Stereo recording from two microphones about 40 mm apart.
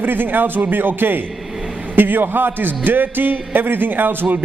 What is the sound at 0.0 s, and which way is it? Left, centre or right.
A man's voice, right.